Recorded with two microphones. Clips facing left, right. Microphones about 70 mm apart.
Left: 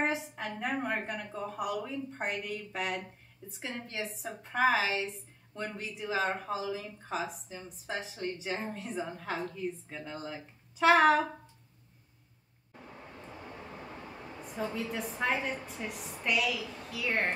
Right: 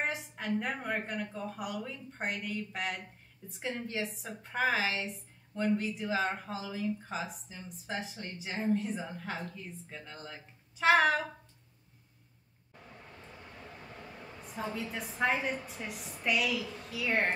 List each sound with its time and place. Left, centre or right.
0.0 s a woman's voice: centre
13.8 s vehicle: left
14.4 s a woman's voice: centre